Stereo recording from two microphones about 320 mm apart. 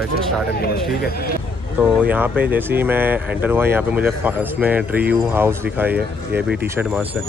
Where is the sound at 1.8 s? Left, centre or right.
Centre.